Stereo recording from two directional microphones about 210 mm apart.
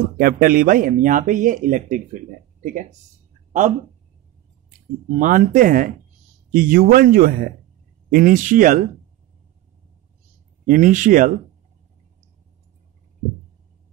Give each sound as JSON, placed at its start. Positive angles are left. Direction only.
{"t": 0.2, "sound": "speech", "side_deg": -45}
{"t": 5.2, "sound": "speech", "side_deg": -40}
{"t": 10.7, "sound": "speech", "side_deg": -40}